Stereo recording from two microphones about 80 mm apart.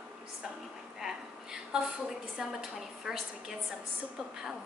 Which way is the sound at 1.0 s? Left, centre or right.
Centre.